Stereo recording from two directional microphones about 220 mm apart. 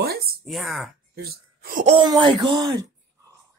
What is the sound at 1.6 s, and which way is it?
Speech, 40° right (ahead or behind).